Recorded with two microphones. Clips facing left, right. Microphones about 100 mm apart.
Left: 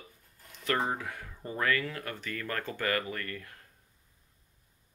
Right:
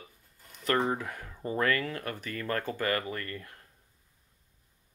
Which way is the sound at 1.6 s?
40° right (ahead or behind).